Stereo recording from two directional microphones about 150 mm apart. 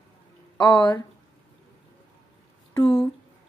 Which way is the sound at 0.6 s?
30° left (ahead or behind).